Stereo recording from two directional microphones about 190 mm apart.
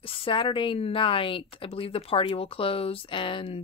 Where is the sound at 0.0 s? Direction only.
30° left (ahead or behind).